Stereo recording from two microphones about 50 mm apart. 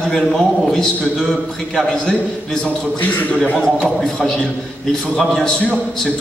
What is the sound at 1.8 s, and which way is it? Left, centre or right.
Speech, centre.